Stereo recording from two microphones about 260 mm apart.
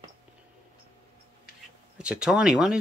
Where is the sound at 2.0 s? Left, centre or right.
Centre.